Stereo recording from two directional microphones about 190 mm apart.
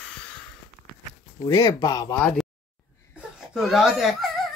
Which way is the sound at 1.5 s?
20° left (ahead or behind).